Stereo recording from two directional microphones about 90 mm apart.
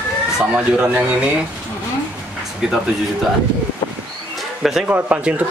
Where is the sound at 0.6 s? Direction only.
15° right (ahead or behind).